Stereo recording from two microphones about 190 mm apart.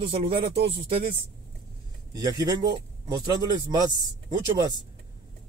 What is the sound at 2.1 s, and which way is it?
Speech, 20° right (ahead or behind).